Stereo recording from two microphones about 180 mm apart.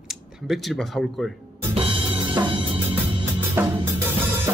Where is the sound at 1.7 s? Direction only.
30° right (ahead or behind).